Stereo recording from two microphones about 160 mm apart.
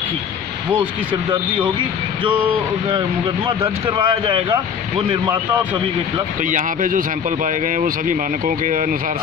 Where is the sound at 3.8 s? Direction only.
30° right (ahead or behind).